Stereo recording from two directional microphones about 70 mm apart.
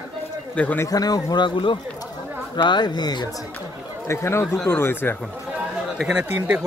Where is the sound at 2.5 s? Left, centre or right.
Left.